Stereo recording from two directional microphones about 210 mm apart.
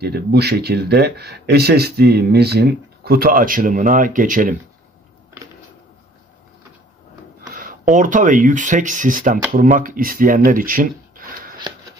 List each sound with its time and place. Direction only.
0.0 s speech: 50° right (ahead or behind)
7.5 s speech: 40° right (ahead or behind)
11.1 s shuffling cards: 40° right (ahead or behind)